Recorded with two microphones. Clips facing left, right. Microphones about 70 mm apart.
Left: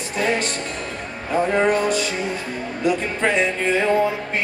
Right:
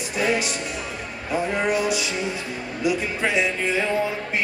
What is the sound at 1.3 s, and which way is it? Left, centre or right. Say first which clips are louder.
Music: left 5 dB; left.